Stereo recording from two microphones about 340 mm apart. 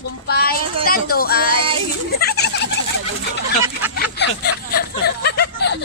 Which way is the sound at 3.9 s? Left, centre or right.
Left.